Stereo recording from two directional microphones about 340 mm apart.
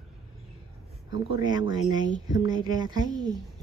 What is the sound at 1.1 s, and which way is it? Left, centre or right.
Speech, centre.